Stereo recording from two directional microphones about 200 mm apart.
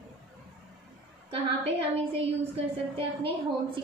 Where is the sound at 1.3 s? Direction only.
25° right (ahead or behind).